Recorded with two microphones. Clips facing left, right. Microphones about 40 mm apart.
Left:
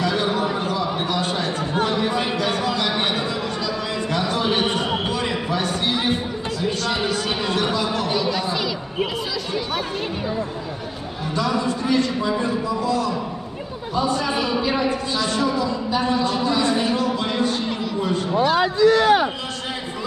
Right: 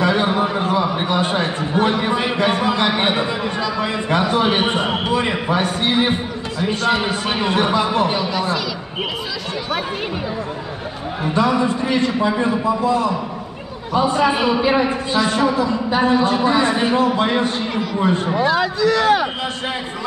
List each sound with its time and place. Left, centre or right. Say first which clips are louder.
0.0 s a sound: right 4 dB; right
6.6 s a man's voice: right 6 dB; right
11.2 s a man's voice: right 5 dB; right